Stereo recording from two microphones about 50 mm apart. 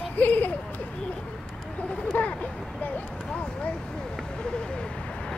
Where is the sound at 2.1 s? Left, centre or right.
Left.